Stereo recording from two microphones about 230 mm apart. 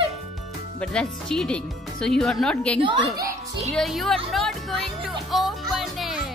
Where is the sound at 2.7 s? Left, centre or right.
Right.